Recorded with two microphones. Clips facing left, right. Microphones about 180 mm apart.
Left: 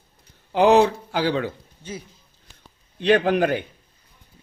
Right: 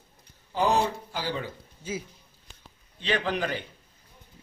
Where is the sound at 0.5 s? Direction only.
75° left (ahead or behind).